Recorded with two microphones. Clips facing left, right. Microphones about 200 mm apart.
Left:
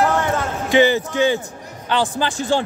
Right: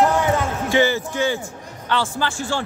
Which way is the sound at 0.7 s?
20° left (ahead or behind).